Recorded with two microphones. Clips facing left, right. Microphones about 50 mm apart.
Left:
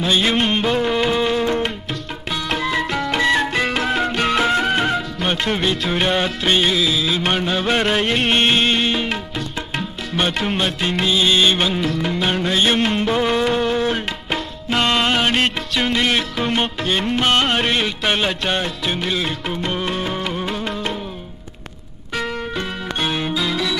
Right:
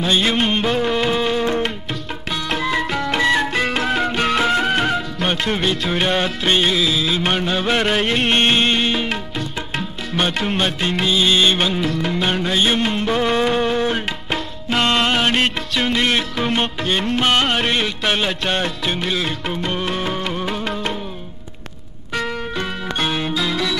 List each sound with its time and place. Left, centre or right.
0.0 s music: centre
2.5 s music: centre
22.9 s music: centre